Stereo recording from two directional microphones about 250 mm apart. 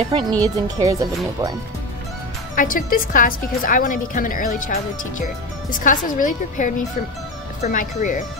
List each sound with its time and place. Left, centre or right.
0.1 s speech: centre
2.5 s a woman's voice: left